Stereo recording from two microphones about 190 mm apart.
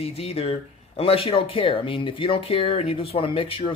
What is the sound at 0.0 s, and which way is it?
Speech, 30° left (ahead or behind).